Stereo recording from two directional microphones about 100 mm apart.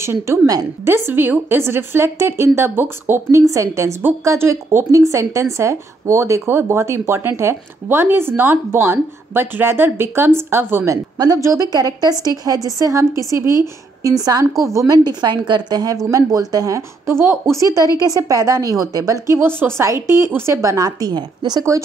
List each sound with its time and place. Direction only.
0.0 s a woman's voice: 25° right (ahead or behind)
11.1 s a woman's voice: 35° right (ahead or behind)
15.0 s a woman's voice: 45° right (ahead or behind)